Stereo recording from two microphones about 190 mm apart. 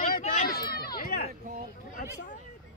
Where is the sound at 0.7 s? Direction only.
50° left (ahead or behind).